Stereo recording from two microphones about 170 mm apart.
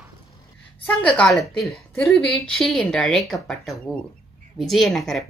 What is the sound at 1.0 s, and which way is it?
A woman's voice, 5° left (ahead or behind).